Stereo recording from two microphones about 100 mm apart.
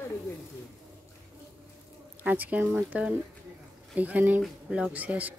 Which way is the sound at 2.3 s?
15° right (ahead or behind).